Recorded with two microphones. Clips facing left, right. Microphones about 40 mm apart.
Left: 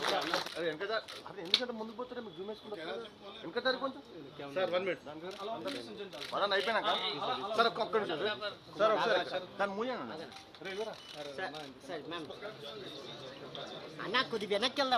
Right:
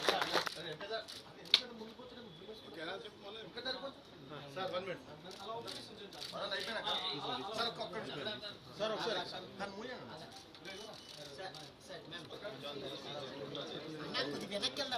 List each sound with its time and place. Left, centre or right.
0.6 s a man's voice: left
2.7 s speech: left
3.5 s a man's voice: left
11.3 s a man's voice: left
13.6 s a man's voice: left